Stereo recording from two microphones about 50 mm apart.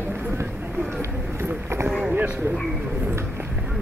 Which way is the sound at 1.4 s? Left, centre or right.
Right.